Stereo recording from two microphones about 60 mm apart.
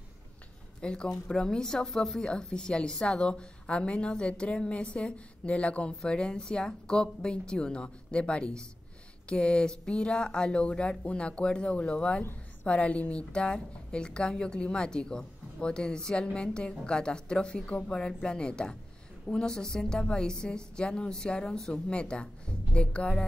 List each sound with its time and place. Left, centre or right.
0.7 s a woman's voice: centre